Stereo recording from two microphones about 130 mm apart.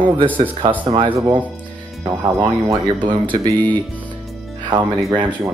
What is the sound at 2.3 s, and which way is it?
Speech, 35° right (ahead or behind).